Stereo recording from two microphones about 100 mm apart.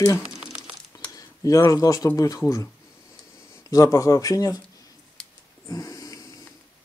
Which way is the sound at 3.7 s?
35° left (ahead or behind).